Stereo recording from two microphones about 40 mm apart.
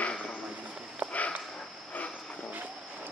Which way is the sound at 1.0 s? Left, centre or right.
Right.